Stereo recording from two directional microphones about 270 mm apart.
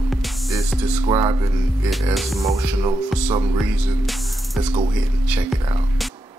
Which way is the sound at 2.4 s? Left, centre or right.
Centre.